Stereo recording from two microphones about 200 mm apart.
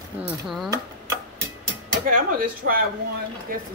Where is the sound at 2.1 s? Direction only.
45° right (ahead or behind).